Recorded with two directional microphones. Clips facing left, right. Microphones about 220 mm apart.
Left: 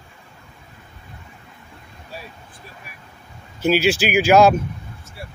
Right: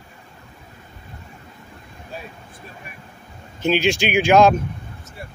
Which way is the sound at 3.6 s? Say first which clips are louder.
Left 1 dB; 5° left (ahead or behind).